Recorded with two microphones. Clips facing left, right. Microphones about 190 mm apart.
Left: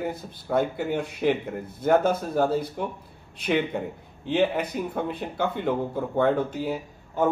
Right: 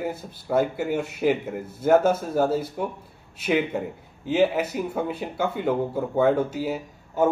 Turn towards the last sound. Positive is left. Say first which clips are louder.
# right 2 dB
turn(degrees=-5)  # may be behind; listen again after turning